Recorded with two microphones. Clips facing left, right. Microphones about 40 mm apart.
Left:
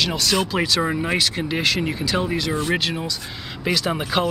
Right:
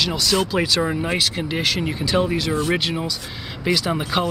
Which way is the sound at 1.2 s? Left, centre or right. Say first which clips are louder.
Even; centre.